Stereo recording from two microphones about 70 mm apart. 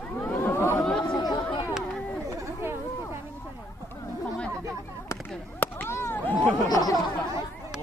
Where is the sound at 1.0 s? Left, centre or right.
Left.